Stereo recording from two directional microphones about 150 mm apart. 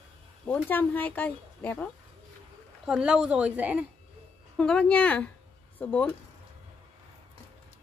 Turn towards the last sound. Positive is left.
turn(degrees=10)  # may be behind; listen again after turning